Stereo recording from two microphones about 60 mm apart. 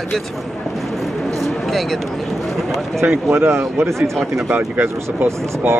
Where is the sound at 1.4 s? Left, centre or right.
Centre.